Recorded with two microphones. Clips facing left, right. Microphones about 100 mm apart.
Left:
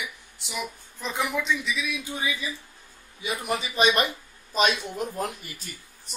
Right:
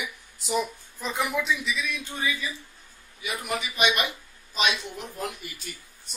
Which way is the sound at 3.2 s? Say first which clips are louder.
Left 2 dB; 35° left (ahead or behind).